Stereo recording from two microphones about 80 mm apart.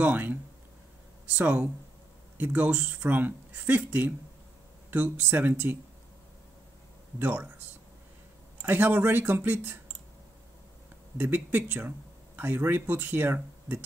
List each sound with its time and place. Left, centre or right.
0.0 s speech: right
7.2 s speech: right
8.6 s speech: right
11.1 s speech: right